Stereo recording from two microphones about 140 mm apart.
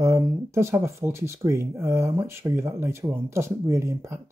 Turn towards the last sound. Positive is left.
turn(degrees=-20)  # may be behind; listen again after turning